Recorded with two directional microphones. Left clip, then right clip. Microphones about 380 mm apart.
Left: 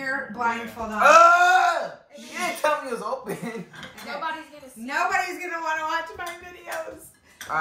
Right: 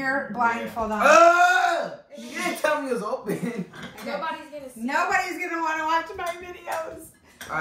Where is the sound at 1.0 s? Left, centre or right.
Centre.